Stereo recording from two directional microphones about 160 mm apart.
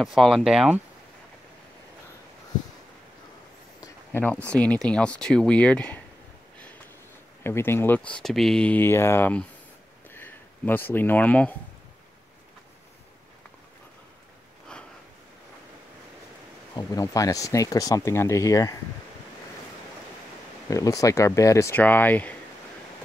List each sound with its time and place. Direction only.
0.0 s speech: centre (ahead or behind)
3.8 s speech: 15° left (ahead or behind)
7.4 s speech: 15° left (ahead or behind)
10.0 s a sound: 15° left (ahead or behind)
16.7 s speech: 20° left (ahead or behind)
20.7 s speech: 20° left (ahead or behind)